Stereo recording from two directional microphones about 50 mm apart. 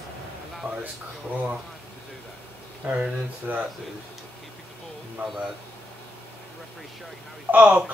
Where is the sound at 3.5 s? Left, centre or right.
Right.